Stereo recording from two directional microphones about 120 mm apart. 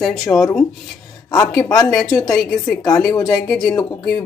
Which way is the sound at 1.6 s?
30° left (ahead or behind).